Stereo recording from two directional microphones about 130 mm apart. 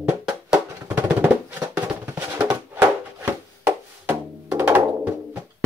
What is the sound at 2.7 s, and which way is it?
Music, 15° right (ahead or behind).